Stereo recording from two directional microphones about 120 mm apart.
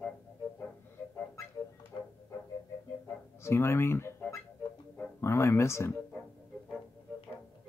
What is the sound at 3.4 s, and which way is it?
Speech, 20° left (ahead or behind).